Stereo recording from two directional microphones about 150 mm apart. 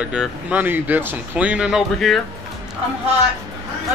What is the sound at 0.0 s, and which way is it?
Speech, 5° right (ahead or behind).